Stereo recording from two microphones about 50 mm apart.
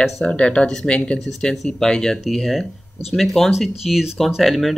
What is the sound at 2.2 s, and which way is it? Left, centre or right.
Speech, centre.